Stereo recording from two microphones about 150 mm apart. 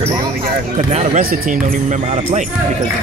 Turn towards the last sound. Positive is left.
turn(degrees=-55)  # may be behind; listen again after turning